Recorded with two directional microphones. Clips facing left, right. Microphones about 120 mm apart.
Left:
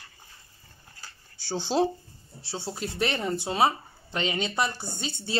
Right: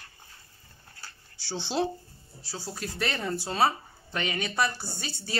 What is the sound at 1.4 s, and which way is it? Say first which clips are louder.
Speech: left 4 dB; 45° left (ahead or behind).